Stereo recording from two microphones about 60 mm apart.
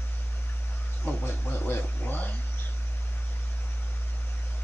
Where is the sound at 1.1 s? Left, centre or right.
Left.